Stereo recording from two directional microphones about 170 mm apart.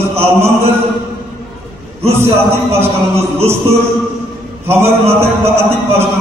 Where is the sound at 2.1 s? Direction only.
15° right (ahead or behind).